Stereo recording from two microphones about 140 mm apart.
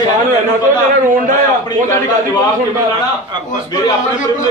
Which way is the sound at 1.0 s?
70° right (ahead or behind).